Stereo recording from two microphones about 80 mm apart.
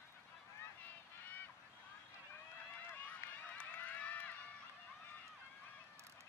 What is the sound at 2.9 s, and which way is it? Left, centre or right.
Run, left.